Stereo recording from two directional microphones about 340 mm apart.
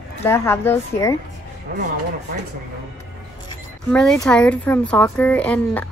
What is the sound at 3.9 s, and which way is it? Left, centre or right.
Speech, centre.